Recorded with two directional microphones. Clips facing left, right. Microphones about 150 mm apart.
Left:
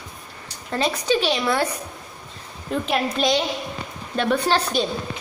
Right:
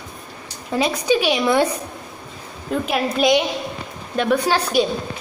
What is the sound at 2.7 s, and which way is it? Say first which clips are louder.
A woman's voice: right 2 dB; 5° right (ahead or behind).